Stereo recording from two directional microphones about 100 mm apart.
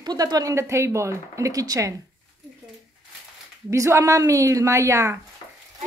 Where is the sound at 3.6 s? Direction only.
30° right (ahead or behind).